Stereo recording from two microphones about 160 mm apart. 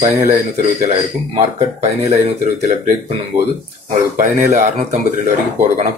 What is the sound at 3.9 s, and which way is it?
Speech, 45° right (ahead or behind).